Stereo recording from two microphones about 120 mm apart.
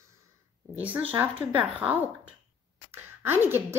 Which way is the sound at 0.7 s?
15° right (ahead or behind).